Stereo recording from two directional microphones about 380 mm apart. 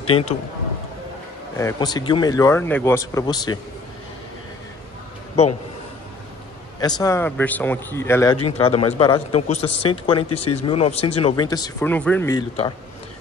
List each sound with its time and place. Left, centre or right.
0.1 s speech: centre
1.6 s speech: centre
5.4 s speech: centre
6.8 s speech: centre
10.1 s speech: left
10.7 s speech: centre
11.0 s speech: left
11.2 s speech: centre